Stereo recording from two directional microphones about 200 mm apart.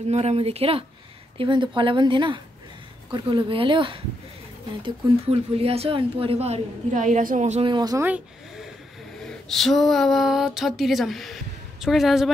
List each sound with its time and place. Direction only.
0.1 s a woman's voice: 30° right (ahead or behind)
8.0 s speech: 5° right (ahead or behind)
9.2 s a sound: centre (ahead or behind)